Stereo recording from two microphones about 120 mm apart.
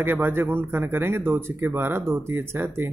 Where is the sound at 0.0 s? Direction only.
20° right (ahead or behind).